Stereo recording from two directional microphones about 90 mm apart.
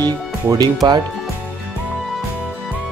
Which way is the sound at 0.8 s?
60° right (ahead or behind).